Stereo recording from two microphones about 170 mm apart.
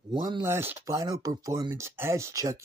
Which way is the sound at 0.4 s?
15° right (ahead or behind).